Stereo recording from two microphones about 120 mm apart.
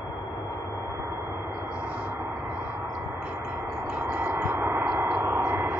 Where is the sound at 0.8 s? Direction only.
20° right (ahead or behind).